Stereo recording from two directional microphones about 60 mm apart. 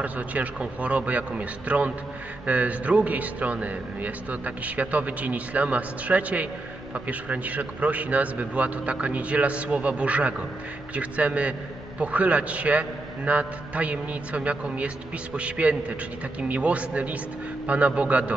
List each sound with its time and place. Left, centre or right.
0.0 s a man's voice: right